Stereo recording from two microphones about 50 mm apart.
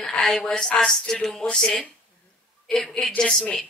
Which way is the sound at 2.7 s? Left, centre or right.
Centre.